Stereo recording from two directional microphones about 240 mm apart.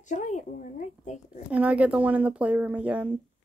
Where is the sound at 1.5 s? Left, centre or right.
Centre.